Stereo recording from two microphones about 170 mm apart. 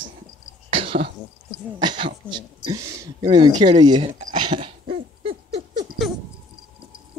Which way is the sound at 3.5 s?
40° right (ahead or behind).